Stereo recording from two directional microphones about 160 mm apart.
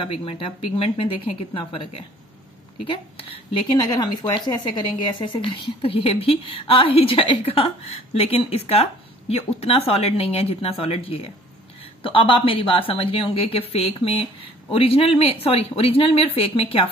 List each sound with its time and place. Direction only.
0.0 s speech: 35° left (ahead or behind)